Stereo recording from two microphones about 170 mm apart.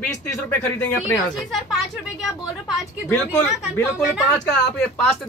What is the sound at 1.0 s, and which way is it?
Speech, centre (ahead or behind).